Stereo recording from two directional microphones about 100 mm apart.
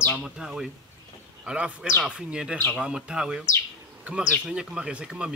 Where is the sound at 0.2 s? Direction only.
5° right (ahead or behind).